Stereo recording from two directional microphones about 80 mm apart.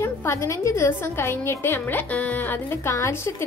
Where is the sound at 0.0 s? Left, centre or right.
Left.